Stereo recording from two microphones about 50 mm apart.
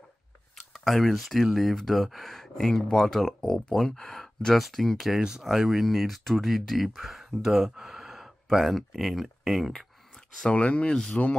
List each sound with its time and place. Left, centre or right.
0.7 s speech: centre
4.6 s speech: centre
10.4 s speech: left